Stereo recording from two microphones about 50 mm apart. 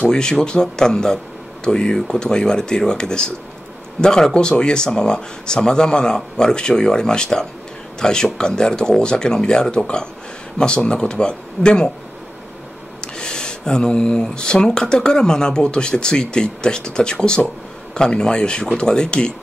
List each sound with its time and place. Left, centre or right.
0.1 s speech: centre
13.0 s speech: centre